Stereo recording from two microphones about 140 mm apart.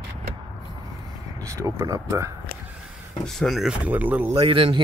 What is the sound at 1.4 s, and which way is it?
Speech, 20° right (ahead or behind).